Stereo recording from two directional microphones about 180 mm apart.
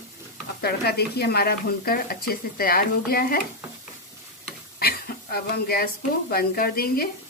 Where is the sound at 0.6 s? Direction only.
60° left (ahead or behind).